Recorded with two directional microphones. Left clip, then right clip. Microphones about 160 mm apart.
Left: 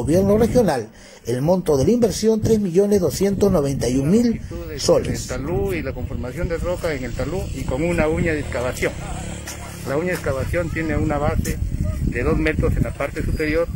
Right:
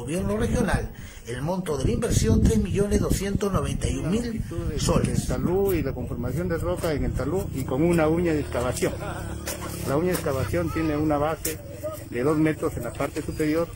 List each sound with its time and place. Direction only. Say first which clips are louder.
0.1 s a man's voice: left 11 dB; 30° left (ahead or behind)
5.7 s speech: left 1 dB; 10° right (ahead or behind)
10.9 s speech: left 2 dB; centre (ahead or behind)